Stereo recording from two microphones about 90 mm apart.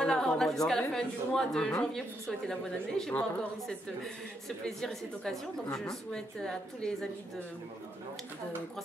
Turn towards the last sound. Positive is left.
turn(degrees=5)  # may be behind; listen again after turning